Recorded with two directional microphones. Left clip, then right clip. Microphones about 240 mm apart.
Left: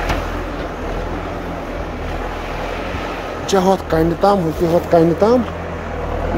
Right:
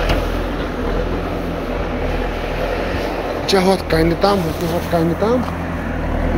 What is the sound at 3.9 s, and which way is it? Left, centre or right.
Speech, left.